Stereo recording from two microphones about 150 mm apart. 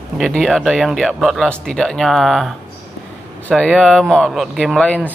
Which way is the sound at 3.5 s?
Centre (ahead or behind).